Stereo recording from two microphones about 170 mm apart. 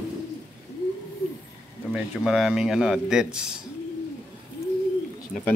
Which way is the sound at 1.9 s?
Centre (ahead or behind).